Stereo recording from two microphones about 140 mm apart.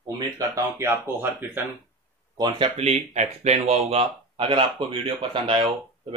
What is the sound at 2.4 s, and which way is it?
Speech, 40° right (ahead or behind).